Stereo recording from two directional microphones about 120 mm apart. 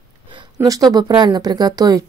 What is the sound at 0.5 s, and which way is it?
Speech, 30° right (ahead or behind).